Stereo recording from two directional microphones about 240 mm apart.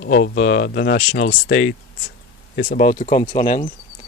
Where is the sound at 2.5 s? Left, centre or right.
Left.